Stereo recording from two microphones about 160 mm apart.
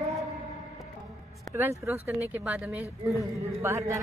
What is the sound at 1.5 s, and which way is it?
A man's voice, 15° right (ahead or behind).